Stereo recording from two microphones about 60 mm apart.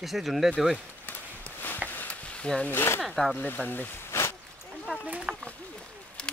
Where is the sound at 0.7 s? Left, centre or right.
Left.